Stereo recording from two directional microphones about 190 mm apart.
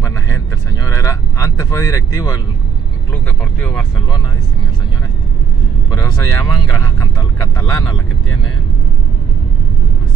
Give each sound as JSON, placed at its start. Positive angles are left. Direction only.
{"t": 0.0, "sound": "vehicle", "side_deg": 15}
{"t": 3.3, "sound": "speech", "side_deg": 5}
{"t": 5.9, "sound": "speech", "side_deg": 20}